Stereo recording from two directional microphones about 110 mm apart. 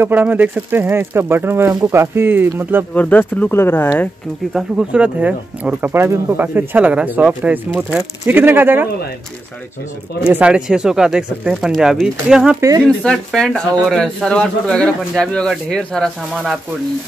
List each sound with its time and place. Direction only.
0.0 s speech: 15° right (ahead or behind)
2.9 s speech: 15° left (ahead or behind)
4.6 s speech: 10° right (ahead or behind)
10.3 s speech: 10° right (ahead or behind)
12.5 s speech: 30° right (ahead or behind)
12.8 s speech: 5° left (ahead or behind)